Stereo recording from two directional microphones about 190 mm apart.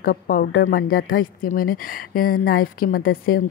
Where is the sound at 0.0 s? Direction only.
50° left (ahead or behind).